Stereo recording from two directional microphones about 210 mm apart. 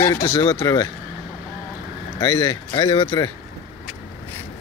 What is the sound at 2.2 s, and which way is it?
Speech, 20° left (ahead or behind).